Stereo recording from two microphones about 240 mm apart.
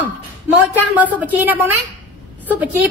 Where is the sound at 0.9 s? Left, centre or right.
Centre.